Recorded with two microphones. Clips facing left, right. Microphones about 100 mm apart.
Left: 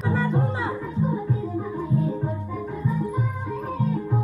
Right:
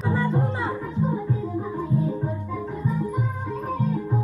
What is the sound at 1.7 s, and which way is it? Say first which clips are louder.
Music: even; 20° right (ahead or behind).